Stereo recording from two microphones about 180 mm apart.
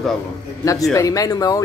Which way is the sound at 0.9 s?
20° left (ahead or behind).